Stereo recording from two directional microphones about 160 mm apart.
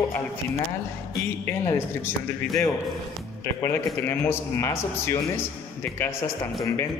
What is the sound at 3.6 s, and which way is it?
Speech, 15° left (ahead or behind).